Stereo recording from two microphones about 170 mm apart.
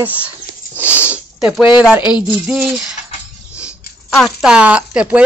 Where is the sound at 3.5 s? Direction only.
5° right (ahead or behind).